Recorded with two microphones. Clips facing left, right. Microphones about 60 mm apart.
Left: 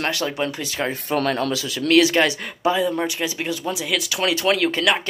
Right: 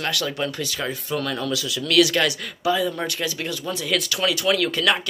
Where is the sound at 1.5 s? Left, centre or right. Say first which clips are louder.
Left 2 dB; left.